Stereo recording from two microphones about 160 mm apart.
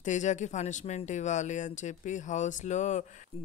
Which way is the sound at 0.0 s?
50° left (ahead or behind).